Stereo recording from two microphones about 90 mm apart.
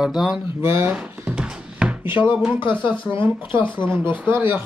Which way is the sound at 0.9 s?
15° right (ahead or behind).